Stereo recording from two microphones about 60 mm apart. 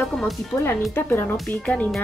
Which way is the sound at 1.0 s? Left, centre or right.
Left.